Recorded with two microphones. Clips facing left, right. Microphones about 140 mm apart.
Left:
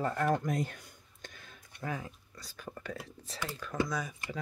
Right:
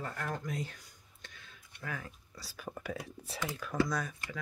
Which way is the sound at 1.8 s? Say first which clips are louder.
Left 4 dB; 25° left (ahead or behind).